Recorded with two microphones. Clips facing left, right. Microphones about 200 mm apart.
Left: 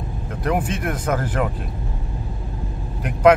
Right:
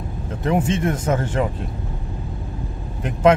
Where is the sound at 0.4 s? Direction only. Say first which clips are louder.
Right 3 dB; 25° right (ahead or behind).